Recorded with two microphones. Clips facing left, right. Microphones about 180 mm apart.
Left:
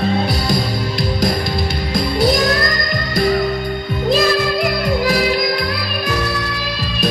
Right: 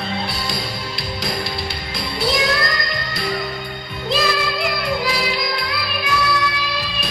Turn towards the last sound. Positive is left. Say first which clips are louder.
# left 5 dB
turn(degrees=45)  # may be behind; listen again after turning